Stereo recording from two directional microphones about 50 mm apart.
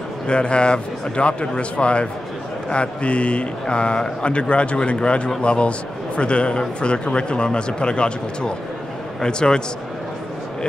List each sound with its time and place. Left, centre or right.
0.3 s a man's voice: left